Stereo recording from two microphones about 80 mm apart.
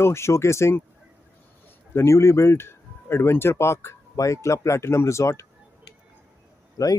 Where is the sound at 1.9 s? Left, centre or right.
Left.